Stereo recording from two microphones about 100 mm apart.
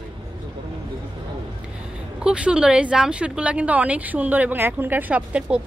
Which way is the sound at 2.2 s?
10° right (ahead or behind).